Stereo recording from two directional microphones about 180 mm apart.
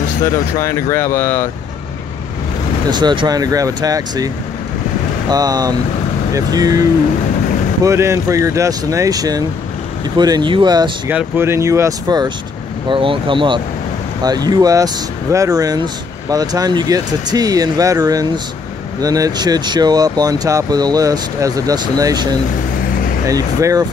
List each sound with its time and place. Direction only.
0.6 s speech: 15° left (ahead or behind)
2.9 s speech: 25° right (ahead or behind)
5.3 s speech: 20° right (ahead or behind)
11.1 s speech: 10° right (ahead or behind)